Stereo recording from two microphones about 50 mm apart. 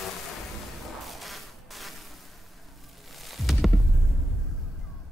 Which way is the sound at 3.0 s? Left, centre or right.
Centre.